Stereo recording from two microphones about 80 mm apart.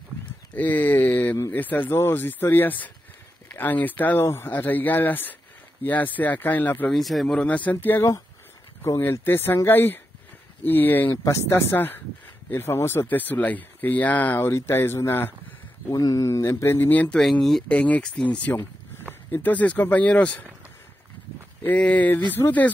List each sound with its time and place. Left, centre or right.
0.6 s speech: left
6.9 s a man's voice: centre
7.3 s speech: centre
9.0 s speech: left
15.9 s speech: left
17.2 s a man's voice: centre
17.6 s speech: centre
21.6 s speech: centre